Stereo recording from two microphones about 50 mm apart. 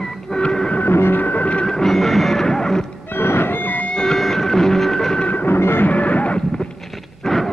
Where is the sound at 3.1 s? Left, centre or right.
Left.